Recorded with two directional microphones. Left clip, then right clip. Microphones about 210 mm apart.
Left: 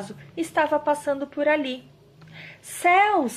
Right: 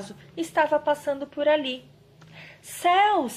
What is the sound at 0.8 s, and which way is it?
A woman's voice, 20° left (ahead or behind).